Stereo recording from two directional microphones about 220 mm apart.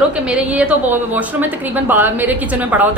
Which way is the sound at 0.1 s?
5° right (ahead or behind).